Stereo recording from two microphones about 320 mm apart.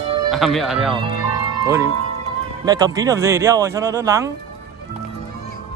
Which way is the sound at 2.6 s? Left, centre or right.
Centre.